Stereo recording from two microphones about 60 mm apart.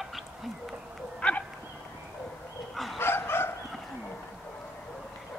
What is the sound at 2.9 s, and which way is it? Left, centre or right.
Dog, left.